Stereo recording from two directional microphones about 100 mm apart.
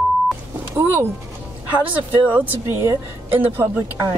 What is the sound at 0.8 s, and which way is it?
Speech, 20° right (ahead or behind).